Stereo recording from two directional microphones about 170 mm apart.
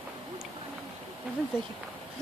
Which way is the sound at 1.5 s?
5° right (ahead or behind).